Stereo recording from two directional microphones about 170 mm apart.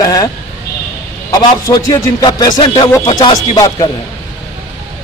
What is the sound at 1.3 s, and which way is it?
A man's voice, 20° left (ahead or behind).